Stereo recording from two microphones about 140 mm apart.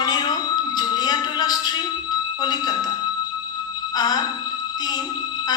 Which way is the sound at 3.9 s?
30° left (ahead or behind).